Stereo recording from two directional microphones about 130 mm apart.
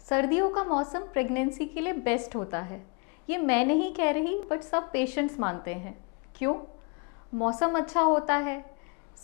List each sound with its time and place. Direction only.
0.1 s a woman's voice: 20° left (ahead or behind)
7.3 s a woman's voice: 25° left (ahead or behind)